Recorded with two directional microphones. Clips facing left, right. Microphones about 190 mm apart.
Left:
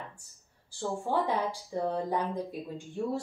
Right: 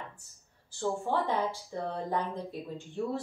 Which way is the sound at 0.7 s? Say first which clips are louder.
Right 1 dB; 10° left (ahead or behind).